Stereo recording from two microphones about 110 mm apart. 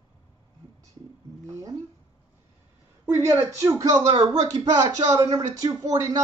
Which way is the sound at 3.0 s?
20° right (ahead or behind).